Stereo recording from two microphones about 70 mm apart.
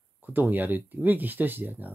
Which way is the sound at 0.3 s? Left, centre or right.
Right.